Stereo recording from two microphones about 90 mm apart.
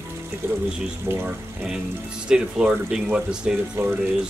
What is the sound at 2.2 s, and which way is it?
Speech, 10° right (ahead or behind).